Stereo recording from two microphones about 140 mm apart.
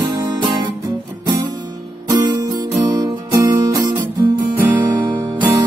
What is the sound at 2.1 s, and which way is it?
Music, 25° right (ahead or behind).